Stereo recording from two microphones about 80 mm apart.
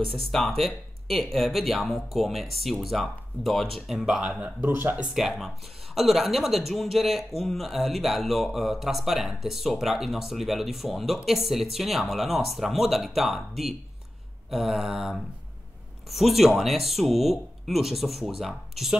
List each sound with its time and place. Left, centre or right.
0.1 s speech: centre
4.6 s speech: right
5.1 s speech: centre